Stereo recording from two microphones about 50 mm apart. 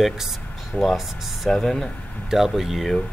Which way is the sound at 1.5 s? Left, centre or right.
Centre.